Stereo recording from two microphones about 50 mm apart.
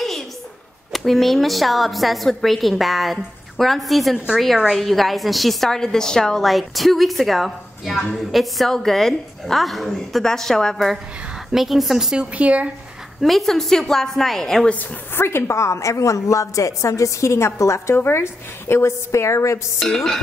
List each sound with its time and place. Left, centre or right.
0.9 s a woman's voice: centre
6.4 s a woman's voice: centre
11.5 s a woman's voice: centre
12.2 s speech: right
13.2 s a woman's voice: centre
15.1 s a woman's voice: left
19.8 s a woman's voice: centre